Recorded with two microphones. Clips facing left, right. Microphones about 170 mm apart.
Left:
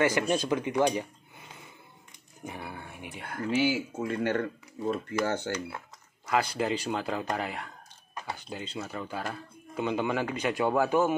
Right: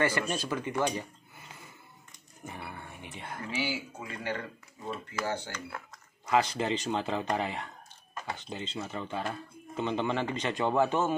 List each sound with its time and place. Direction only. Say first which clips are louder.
0.0 s speech: left 4 dB; 15° left (ahead or behind)
2.4 s a sound: left 3 dB; 10° left (ahead or behind)
3.5 s speech: left 8 dB; 55° left (ahead or behind)
6.5 s speech: left 1 dB; 5° left (ahead or behind)